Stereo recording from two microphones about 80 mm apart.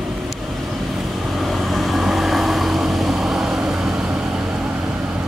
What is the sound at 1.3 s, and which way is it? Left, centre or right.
Vehicle, centre.